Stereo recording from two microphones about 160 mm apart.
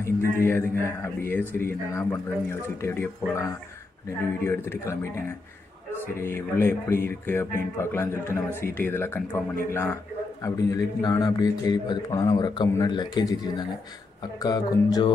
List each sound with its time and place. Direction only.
0.4 s speech: 15° left (ahead or behind)
4.6 s speech: 15° left (ahead or behind)
6.1 s a man's voice: 15° left (ahead or behind)